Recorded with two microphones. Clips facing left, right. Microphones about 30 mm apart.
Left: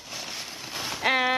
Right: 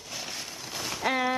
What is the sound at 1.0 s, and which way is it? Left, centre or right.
Speech, left.